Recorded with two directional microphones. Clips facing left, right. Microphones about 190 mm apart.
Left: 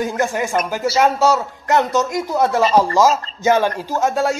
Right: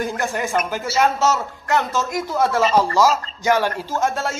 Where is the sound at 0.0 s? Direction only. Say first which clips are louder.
Left 3 dB; 15° left (ahead or behind).